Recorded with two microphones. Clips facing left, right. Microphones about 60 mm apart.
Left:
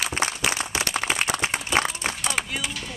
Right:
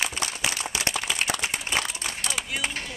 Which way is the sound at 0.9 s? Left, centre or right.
Left.